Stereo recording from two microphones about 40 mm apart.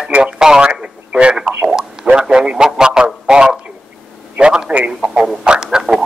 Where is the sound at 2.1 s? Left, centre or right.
Centre.